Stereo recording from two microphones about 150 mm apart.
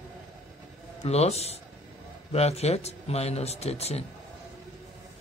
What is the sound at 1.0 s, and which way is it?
A man's voice, 45° left (ahead or behind).